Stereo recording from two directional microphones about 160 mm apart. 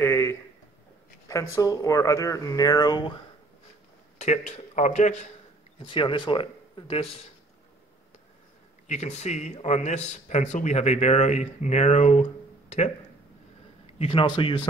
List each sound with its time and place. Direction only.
0.0 s a sound: 15° left (ahead or behind)
1.3 s speech: 15° left (ahead or behind)
4.2 s speech: 45° left (ahead or behind)
5.8 s speech: 30° left (ahead or behind)
8.8 s speech: 45° left (ahead or behind)
13.9 s speech: 35° left (ahead or behind)